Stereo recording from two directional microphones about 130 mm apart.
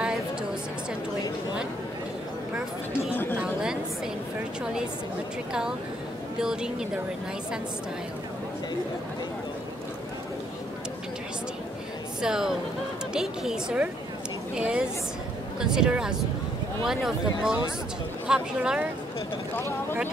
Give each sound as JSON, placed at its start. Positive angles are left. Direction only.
{"t": 2.9, "sound": "chatter", "side_deg": 15}
{"t": 6.4, "sound": "speech", "side_deg": -5}
{"t": 12.2, "sound": "speech", "side_deg": -5}